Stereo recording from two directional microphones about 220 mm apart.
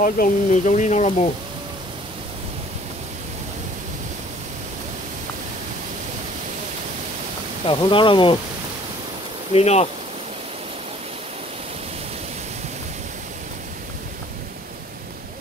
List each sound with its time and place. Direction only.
0.0 s speech: 35° left (ahead or behind)
7.6 s speech: 25° left (ahead or behind)
9.5 s speech: 30° left (ahead or behind)